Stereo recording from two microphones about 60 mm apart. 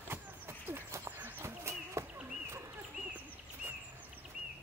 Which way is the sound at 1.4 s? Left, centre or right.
Right.